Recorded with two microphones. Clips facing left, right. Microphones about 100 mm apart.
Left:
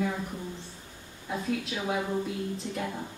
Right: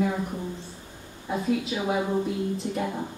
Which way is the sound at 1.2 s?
10° right (ahead or behind).